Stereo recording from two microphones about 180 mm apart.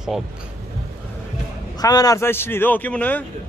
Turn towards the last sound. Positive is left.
turn(degrees=10)  # may be behind; listen again after turning